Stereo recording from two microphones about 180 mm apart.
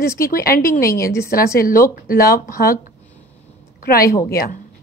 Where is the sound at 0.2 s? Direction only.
55° left (ahead or behind).